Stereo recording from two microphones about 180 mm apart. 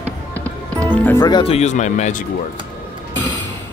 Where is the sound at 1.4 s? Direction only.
35° left (ahead or behind).